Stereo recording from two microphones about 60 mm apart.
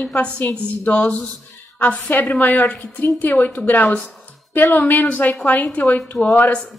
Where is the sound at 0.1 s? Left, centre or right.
Left.